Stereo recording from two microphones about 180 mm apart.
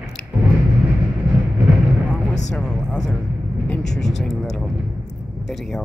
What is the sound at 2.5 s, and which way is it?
Speech, 5° left (ahead or behind).